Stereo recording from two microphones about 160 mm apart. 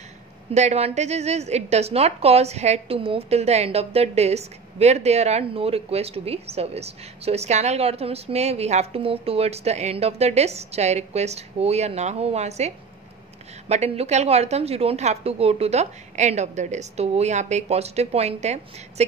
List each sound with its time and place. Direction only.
0.6 s a woman's voice: 45° right (ahead or behind)